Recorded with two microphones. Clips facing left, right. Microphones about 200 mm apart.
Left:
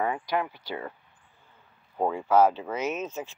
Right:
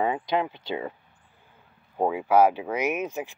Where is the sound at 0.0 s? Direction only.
20° right (ahead or behind).